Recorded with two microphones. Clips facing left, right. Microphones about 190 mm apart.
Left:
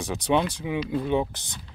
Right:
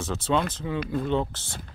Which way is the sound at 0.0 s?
15° left (ahead or behind).